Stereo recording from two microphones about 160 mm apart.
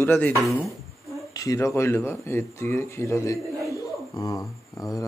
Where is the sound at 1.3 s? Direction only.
20° left (ahead or behind).